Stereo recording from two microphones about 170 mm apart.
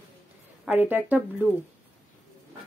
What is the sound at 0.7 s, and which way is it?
Speech, 10° right (ahead or behind).